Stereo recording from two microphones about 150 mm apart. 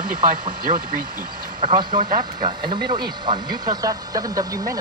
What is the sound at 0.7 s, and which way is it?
Speech, 55° right (ahead or behind).